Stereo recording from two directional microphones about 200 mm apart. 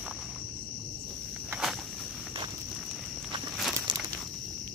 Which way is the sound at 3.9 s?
20° right (ahead or behind).